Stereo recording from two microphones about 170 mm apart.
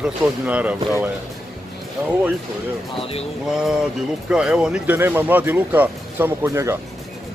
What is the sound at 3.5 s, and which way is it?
Speech, 5° right (ahead or behind).